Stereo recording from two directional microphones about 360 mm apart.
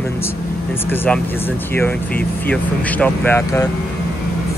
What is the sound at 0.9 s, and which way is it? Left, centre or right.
Speech, centre.